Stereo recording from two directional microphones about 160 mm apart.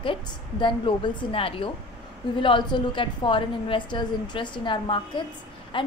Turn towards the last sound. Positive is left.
turn(degrees=30)  # may be behind; listen again after turning